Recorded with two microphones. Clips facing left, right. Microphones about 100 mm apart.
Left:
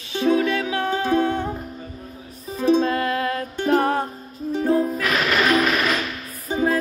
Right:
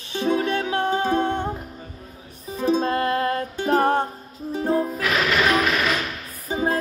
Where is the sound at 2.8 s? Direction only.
40° right (ahead or behind).